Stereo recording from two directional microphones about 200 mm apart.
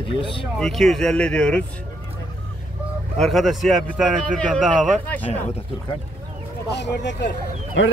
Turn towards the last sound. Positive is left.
turn(degrees=65)  # may be behind; listen again after turning